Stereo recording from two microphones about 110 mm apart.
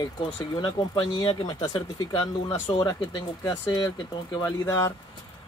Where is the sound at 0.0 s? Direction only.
45° left (ahead or behind).